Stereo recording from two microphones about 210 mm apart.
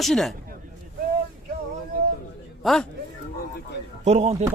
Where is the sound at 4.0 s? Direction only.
30° right (ahead or behind).